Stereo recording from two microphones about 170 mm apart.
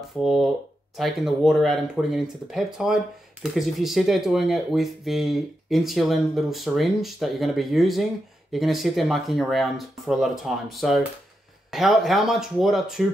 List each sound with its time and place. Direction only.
0.2 s speech: centre (ahead or behind)